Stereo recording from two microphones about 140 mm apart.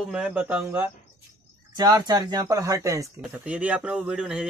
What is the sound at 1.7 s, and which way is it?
A man's voice, 30° right (ahead or behind).